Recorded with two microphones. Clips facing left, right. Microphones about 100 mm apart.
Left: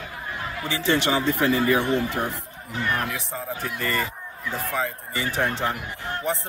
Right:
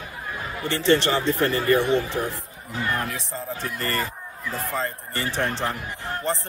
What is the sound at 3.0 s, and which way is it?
Speech, 90° left.